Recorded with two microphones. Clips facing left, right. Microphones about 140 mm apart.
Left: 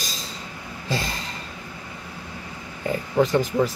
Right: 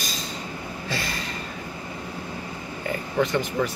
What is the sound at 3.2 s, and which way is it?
Speech, 35° left (ahead or behind).